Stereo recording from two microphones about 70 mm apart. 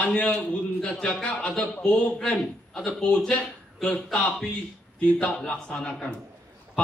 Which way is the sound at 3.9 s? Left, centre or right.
Centre.